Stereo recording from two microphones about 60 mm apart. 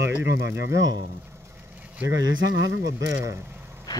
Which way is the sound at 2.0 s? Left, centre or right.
Right.